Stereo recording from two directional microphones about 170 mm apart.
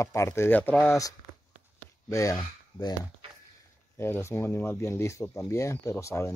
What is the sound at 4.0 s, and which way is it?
Speech, 15° left (ahead or behind).